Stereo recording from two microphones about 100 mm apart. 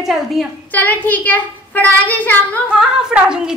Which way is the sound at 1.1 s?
15° left (ahead or behind).